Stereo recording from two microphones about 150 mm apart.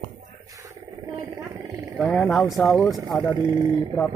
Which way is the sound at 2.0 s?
5° left (ahead or behind).